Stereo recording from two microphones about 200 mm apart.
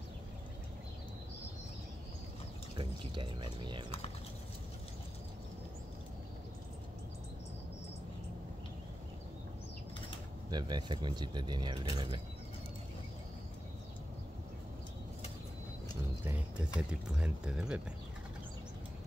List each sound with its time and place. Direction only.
2.8 s speech: 25° right (ahead or behind)
10.5 s speech: 20° right (ahead or behind)
16.3 s a sound: 5° right (ahead or behind)
16.9 s speech: 5° right (ahead or behind)